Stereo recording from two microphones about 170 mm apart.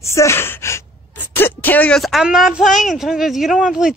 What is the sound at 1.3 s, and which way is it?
Speech, 10° left (ahead or behind).